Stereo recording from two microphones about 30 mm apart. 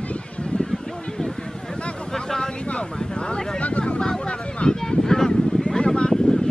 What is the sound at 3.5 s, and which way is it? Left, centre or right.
Speech, left.